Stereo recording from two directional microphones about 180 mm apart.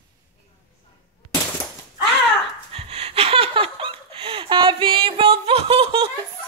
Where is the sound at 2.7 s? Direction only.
35° right (ahead or behind).